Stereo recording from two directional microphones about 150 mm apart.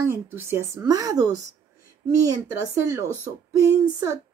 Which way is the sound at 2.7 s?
20° right (ahead or behind).